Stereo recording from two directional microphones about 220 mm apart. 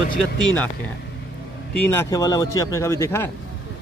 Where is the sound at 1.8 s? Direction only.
10° left (ahead or behind).